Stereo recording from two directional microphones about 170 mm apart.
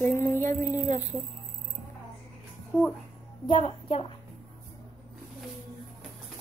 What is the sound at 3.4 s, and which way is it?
Speech, 30° left (ahead or behind).